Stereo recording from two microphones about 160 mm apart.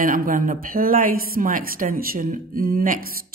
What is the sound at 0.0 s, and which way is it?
A woman's voice, 60° right (ahead or behind).